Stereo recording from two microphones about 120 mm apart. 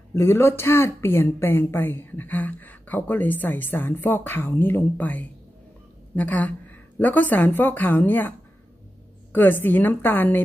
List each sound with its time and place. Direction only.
0.1 s speech: 20° left (ahead or behind)
9.3 s speech: 15° left (ahead or behind)